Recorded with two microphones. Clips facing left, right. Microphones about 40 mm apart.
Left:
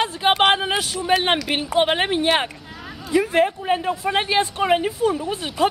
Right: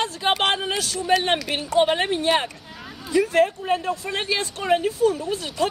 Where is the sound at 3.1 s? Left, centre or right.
Centre.